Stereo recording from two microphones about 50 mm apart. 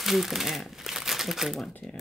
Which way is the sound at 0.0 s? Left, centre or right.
Centre.